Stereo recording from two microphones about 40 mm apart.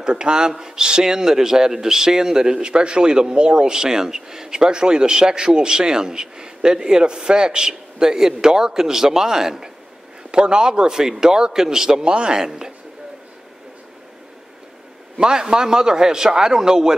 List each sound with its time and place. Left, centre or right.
0.0 s a man's voice: right
15.1 s a man's voice: centre